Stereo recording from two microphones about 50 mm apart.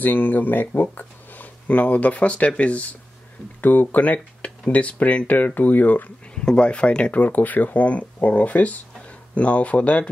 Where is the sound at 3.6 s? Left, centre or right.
Left.